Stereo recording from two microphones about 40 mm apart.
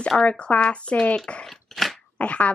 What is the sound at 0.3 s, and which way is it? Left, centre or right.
Speech, left.